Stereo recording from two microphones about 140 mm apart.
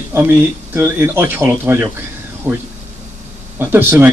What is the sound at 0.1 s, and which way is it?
A man's voice, 15° right (ahead or behind).